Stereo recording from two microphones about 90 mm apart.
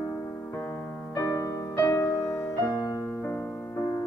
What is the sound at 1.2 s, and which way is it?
Music, 30° left (ahead or behind).